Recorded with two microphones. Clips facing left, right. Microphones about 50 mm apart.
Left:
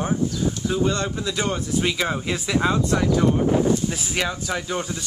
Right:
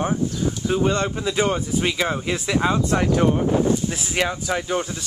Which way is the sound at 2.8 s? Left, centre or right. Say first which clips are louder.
Right 1 dB; right.